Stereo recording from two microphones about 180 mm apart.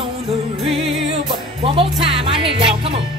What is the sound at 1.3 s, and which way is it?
Music, 30° right (ahead or behind).